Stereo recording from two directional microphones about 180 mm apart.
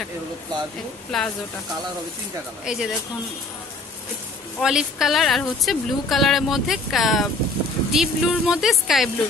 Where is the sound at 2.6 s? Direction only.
5° right (ahead or behind).